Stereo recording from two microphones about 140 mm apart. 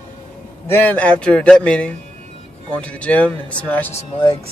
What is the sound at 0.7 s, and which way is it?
A man's voice, 10° left (ahead or behind).